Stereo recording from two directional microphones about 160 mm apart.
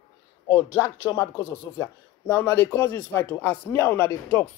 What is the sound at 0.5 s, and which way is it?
Speech, 15° left (ahead or behind).